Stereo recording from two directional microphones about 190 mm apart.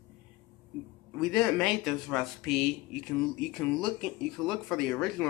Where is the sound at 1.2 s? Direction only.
Centre (ahead or behind).